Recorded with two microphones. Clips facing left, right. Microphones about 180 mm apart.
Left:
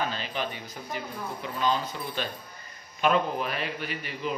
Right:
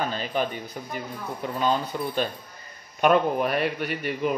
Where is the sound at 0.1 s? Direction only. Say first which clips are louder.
Right 6 dB; 45° right (ahead or behind).